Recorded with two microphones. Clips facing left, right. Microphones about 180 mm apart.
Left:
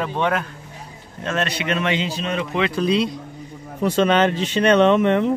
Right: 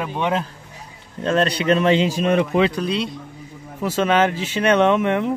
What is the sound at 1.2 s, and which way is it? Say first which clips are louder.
Speech: right 6 dB; 35° right (ahead or behind).